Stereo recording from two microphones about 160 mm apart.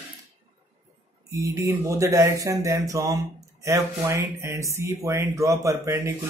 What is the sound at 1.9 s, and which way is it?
Speech, 20° right (ahead or behind).